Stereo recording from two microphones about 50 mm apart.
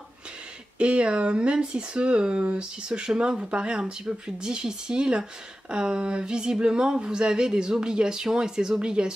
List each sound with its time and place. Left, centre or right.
0.7 s speech: right